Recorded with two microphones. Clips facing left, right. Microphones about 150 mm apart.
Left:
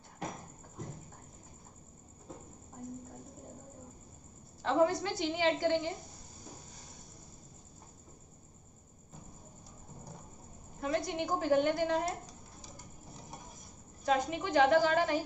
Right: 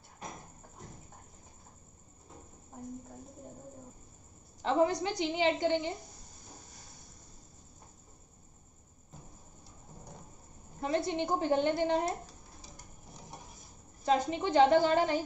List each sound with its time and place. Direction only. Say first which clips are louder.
4.6 s a woman's voice: even; 20° right (ahead or behind)
10.8 s a woman's voice: right 2 dB; 25° right (ahead or behind)
14.0 s a woman's voice: right 2 dB; 30° right (ahead or behind)